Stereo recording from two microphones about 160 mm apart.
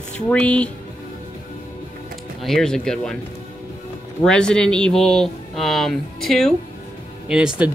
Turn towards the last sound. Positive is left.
turn(degrees=-5)  # may be behind; listen again after turning